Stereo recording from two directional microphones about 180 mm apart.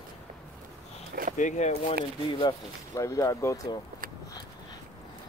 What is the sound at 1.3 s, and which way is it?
Speech, 40° left (ahead or behind).